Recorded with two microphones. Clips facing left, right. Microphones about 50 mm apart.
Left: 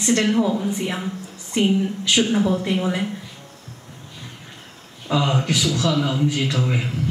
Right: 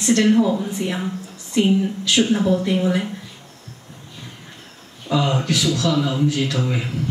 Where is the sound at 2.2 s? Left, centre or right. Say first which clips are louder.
Right 3 dB; centre.